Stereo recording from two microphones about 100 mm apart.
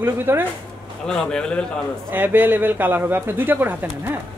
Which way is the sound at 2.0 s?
20° right (ahead or behind).